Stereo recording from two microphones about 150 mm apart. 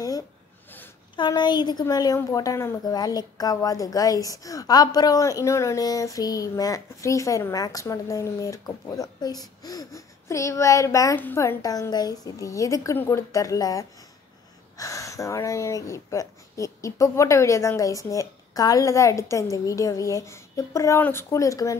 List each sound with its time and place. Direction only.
1.1 s a woman's voice: 30° left (ahead or behind)